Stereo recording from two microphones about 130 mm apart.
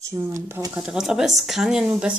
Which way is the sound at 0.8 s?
5° right (ahead or behind).